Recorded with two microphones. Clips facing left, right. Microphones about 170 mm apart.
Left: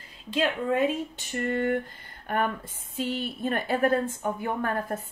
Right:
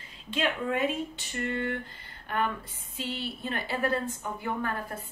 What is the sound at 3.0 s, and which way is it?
A woman's voice, 45° left (ahead or behind).